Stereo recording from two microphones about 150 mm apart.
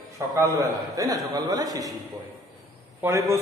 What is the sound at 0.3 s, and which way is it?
A man's voice, 20° right (ahead or behind).